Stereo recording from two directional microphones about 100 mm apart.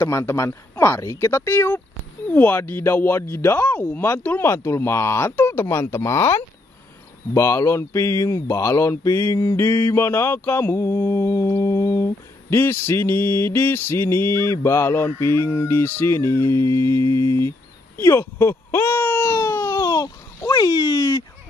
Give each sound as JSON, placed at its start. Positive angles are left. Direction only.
{"t": 0.0, "sound": "speech", "side_deg": 25}
{"t": 9.6, "sound": "mantra", "side_deg": 25}
{"t": 19.8, "sound": "a sound", "side_deg": 40}